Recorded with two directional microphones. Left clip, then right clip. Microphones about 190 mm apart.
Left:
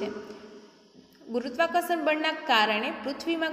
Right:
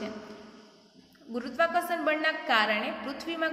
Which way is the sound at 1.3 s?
20° left (ahead or behind).